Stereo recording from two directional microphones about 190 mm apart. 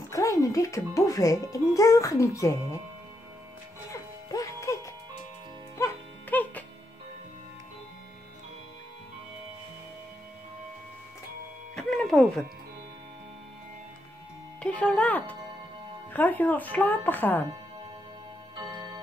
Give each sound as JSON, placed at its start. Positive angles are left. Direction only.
{"t": 0.1, "sound": "a child's voice", "side_deg": 15}
{"t": 3.9, "sound": "music", "side_deg": 15}
{"t": 5.8, "sound": "music", "side_deg": 15}
{"t": 11.7, "sound": "music", "side_deg": 0}
{"t": 14.6, "sound": "a child's voice", "side_deg": 5}
{"t": 18.7, "sound": "tick-tock", "side_deg": -20}